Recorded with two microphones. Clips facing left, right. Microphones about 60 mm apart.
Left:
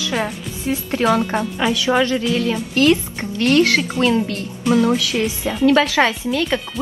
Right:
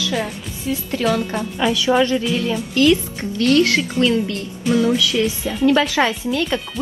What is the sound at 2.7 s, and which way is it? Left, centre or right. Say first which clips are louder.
Speech: right 1 dB; left.